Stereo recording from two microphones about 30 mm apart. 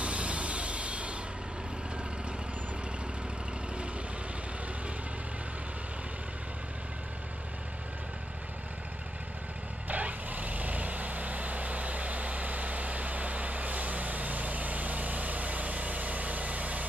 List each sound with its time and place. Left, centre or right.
0.0 s vehicle: right
9.8 s vehicle: right